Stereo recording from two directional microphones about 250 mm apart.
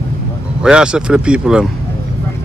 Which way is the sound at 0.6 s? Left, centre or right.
Centre.